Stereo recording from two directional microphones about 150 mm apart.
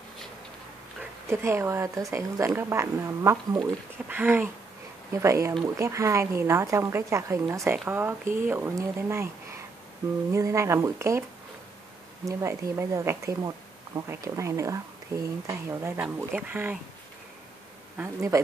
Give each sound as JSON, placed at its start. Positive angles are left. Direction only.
{"t": 1.3, "sound": "speech", "side_deg": -15}
{"t": 10.3, "sound": "speech", "side_deg": -20}
{"t": 12.3, "sound": "speech", "side_deg": -20}
{"t": 17.9, "sound": "speech", "side_deg": -20}